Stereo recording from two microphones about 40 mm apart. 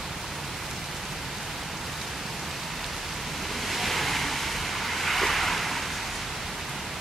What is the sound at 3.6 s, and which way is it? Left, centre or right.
Waves, centre.